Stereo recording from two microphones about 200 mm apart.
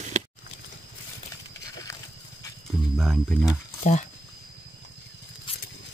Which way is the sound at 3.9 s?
35° left (ahead or behind).